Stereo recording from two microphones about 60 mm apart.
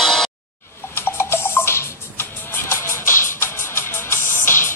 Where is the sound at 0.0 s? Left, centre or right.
Centre.